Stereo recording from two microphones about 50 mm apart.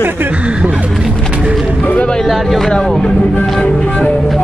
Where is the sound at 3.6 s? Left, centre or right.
Left.